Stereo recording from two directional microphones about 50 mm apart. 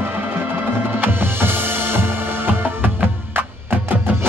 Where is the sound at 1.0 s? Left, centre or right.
Right.